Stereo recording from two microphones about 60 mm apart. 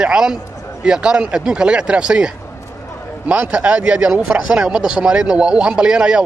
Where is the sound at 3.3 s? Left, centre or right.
Right.